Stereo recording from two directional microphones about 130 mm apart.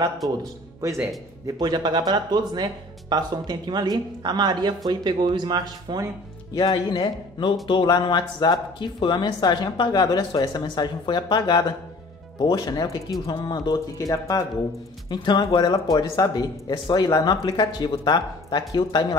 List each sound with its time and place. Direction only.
0.4 s speech: 25° right (ahead or behind)
6.5 s speech: 35° left (ahead or behind)